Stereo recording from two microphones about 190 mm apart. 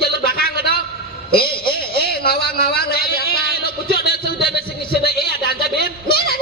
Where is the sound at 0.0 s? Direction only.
55° left (ahead or behind).